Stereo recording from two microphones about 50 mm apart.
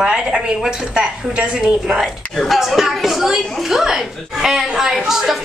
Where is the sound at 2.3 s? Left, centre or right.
Centre.